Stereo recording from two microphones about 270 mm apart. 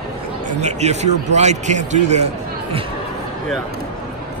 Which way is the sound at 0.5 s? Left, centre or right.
Right.